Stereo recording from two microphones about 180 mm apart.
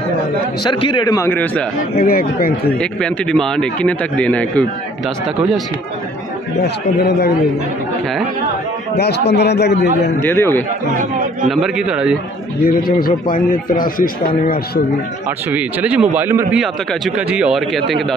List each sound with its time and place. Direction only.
0.7 s a man's voice: 25° left (ahead or behind); by 1.7 s 10° left (ahead or behind)
2.0 s speech: 55° left (ahead or behind)
2.8 s a man's voice: 5° left (ahead or behind)
6.6 s speech: 65° left (ahead or behind)
8.9 s a man's voice: 65° left (ahead or behind)
10.2 s a man's voice: 15° left (ahead or behind)
11.4 s a man's voice: 5° right (ahead or behind)
12.6 s a man's voice: 55° left (ahead or behind)
15.5 s a man's voice: 5° right (ahead or behind)